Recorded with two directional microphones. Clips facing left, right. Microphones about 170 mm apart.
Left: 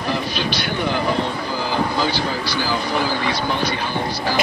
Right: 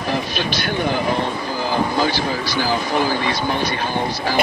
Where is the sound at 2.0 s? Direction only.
50° right (ahead or behind).